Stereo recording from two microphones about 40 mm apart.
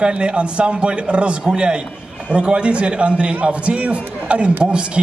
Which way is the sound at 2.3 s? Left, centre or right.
Right.